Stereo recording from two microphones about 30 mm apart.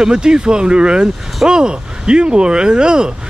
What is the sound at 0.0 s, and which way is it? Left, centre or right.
Speech, right.